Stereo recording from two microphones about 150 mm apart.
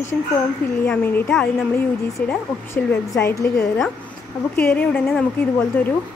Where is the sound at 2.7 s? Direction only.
20° left (ahead or behind).